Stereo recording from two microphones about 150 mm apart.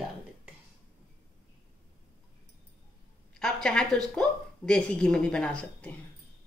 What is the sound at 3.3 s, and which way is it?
Speech, 5° left (ahead or behind).